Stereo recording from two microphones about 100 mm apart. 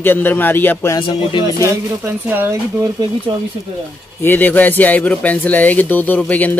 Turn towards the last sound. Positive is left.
turn(degrees=15)  # may be behind; listen again after turning